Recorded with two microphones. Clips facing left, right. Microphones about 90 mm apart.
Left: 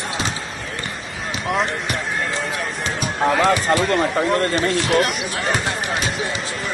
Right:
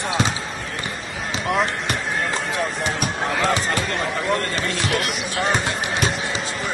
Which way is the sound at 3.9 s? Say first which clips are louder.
Left 4 dB; 40° left (ahead or behind).